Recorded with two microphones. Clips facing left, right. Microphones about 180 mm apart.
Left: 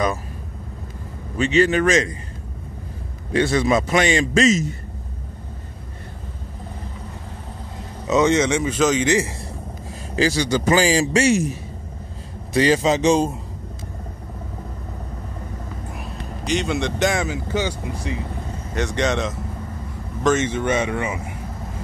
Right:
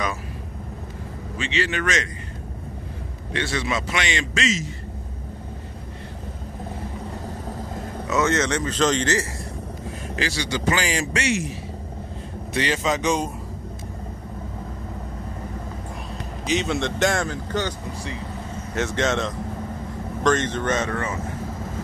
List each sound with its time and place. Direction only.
1.4 s speech: 35° left (ahead or behind)
3.3 s speech: 45° left (ahead or behind)
8.1 s speech: 15° left (ahead or behind)
10.1 s speech: 40° left (ahead or behind)
12.5 s speech: 35° left (ahead or behind)
16.4 s speech: centre (ahead or behind)